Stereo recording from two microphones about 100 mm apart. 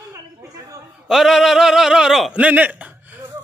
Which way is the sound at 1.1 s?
5° right (ahead or behind).